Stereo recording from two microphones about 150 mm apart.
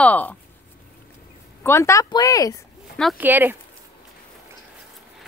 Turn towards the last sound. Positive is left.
turn(degrees=-10)  # may be behind; listen again after turning